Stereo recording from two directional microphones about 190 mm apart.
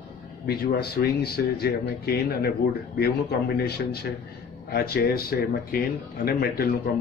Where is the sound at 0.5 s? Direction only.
55° left (ahead or behind).